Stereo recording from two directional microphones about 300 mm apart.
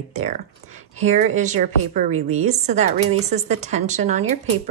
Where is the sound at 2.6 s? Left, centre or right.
Right.